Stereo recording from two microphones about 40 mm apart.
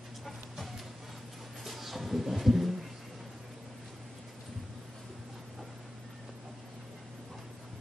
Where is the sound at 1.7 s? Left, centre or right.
Centre.